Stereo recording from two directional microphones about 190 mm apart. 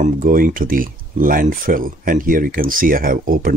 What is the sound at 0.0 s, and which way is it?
Speech, 45° right (ahead or behind).